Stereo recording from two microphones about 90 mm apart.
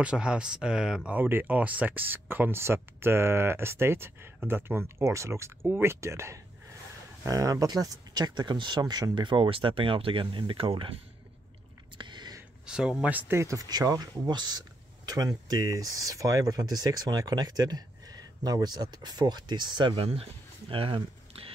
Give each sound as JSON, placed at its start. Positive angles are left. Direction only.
{"t": 0.0, "sound": "speech", "side_deg": -10}
{"t": 1.1, "sound": "speech", "side_deg": -20}
{"t": 12.0, "sound": "a sound", "side_deg": -55}
{"t": 12.6, "sound": "speech", "side_deg": -10}
{"t": 13.1, "sound": "speech", "side_deg": -30}
{"t": 20.0, "sound": "speech", "side_deg": -90}